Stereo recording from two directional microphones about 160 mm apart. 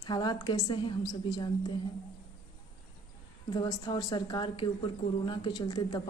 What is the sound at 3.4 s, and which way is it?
Speech, 25° left (ahead or behind).